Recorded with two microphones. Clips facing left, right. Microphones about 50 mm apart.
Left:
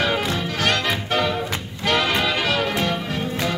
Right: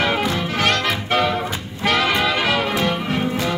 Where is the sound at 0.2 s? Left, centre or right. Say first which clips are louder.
Right 3 dB; right.